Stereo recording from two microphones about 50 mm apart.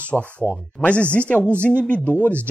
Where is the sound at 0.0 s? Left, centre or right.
Left.